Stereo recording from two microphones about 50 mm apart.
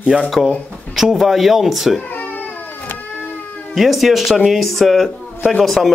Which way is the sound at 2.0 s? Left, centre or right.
Left.